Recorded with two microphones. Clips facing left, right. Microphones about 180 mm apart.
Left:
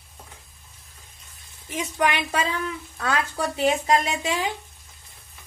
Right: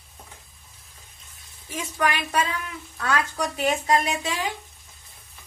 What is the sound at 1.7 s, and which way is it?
Speech, 20° left (ahead or behind).